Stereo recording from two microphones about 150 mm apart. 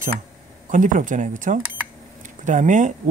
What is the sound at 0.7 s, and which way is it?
Speech, 60° right (ahead or behind).